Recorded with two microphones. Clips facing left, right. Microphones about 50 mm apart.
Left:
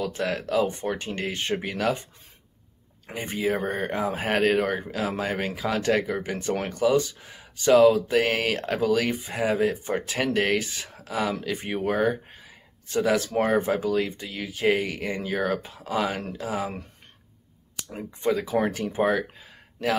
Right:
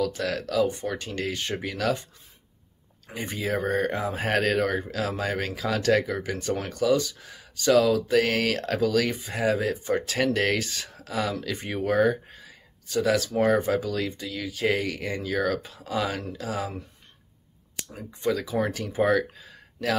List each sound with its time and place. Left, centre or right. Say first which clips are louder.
0.0 s speech: even; left
3.1 s speech: left 1 dB; left
3.3 s speech: even; centre
12.3 s a sound: right 1 dB; centre
13.0 s speech: even; left
17.9 s speech: left 2 dB; left